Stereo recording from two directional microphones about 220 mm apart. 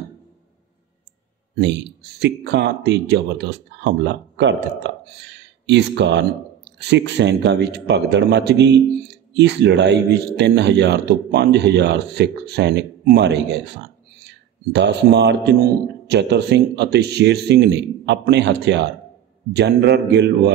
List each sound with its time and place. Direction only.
1.5 s a man's voice: 50° right (ahead or behind)
5.7 s a man's voice: 50° right (ahead or behind)
14.7 s a man's voice: 50° right (ahead or behind)